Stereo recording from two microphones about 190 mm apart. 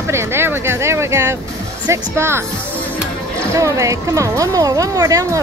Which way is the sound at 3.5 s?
15° right (ahead or behind).